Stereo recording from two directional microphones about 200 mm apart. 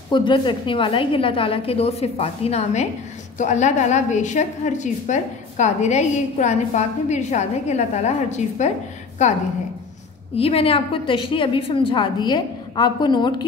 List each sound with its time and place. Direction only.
0.1 s a woman's voice: 25° left (ahead or behind)
10.3 s a woman's voice: 30° left (ahead or behind)